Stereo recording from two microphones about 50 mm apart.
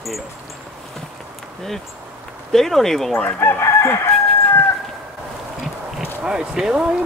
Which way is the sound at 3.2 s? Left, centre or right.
Left.